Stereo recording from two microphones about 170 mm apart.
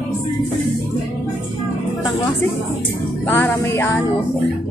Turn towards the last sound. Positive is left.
turn(degrees=15)  # may be behind; listen again after turning